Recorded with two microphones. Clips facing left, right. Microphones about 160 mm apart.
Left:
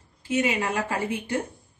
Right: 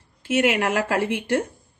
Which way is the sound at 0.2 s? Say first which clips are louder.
Right 4 dB; 75° right (ahead or behind).